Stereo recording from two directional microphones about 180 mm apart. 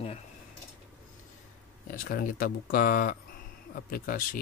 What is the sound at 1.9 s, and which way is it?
Speech, 55° left (ahead or behind).